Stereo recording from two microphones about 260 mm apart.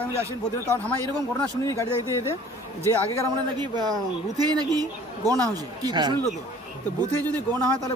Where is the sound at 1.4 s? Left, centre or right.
Centre.